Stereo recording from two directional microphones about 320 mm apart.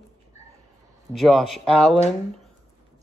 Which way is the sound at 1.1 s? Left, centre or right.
Centre.